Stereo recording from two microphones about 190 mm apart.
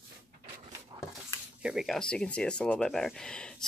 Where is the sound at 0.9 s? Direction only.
30° right (ahead or behind).